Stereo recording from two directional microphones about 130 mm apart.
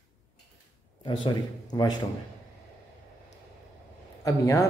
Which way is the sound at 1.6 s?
30° left (ahead or behind).